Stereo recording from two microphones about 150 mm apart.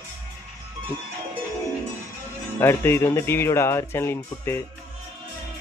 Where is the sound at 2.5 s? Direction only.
15° left (ahead or behind).